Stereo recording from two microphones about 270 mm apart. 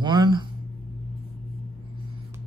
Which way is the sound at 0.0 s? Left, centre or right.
Centre.